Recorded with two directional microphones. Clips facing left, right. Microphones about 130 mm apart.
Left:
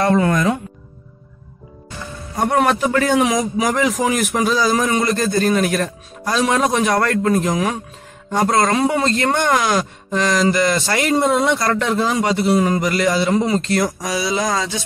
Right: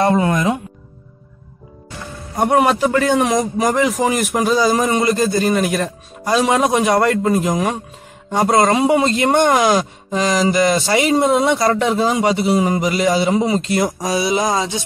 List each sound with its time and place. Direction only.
0.0 s music: 25° right (ahead or behind)
2.5 s a man's voice: 5° right (ahead or behind)
8.8 s speech: 15° right (ahead or behind)
9.8 s a man's voice: centre (ahead or behind)
11.6 s speech: 15° right (ahead or behind)
12.1 s a man's voice: 5° right (ahead or behind)
13.8 s speech: 25° right (ahead or behind)